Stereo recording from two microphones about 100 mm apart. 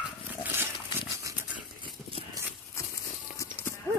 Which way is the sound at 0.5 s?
20° right (ahead or behind).